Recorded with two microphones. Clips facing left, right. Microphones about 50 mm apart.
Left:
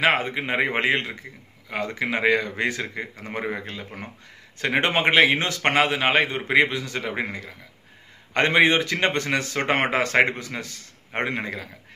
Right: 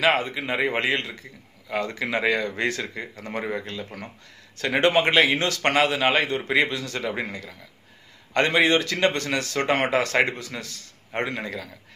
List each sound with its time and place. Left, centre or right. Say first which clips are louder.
0.0 s a man's voice: left 1 dB; left